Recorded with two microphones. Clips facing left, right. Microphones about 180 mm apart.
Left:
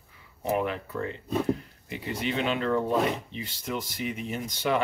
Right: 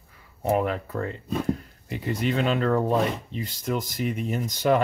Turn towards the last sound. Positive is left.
turn(degrees=-45)  # may be behind; listen again after turning